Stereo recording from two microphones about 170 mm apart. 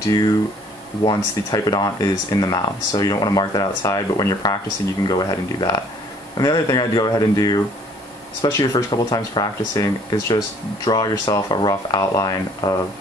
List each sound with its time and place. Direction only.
1.0 s speech: 20° left (ahead or behind)